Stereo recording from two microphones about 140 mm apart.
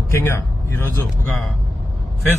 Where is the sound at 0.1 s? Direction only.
15° left (ahead or behind).